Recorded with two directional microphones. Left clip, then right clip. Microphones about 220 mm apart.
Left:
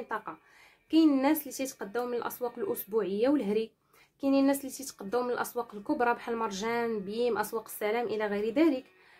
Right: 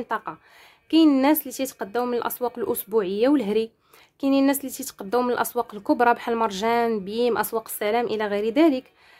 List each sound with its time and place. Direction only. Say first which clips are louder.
0.1 s speech: right 8 dB; 40° right (ahead or behind)